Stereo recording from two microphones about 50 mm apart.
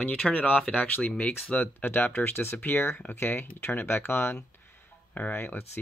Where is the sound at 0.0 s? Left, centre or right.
Left.